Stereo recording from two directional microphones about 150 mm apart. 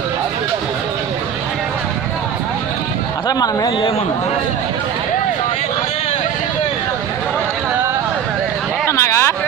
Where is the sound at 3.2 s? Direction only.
25° left (ahead or behind).